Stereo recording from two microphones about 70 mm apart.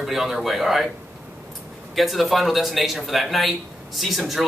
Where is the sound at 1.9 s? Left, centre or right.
Centre.